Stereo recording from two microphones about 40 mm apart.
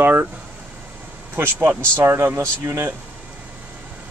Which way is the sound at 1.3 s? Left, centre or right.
Right.